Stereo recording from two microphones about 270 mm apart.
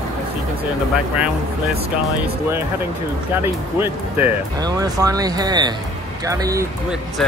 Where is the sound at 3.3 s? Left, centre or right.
Centre.